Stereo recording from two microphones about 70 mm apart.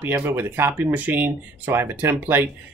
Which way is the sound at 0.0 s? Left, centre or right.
Right.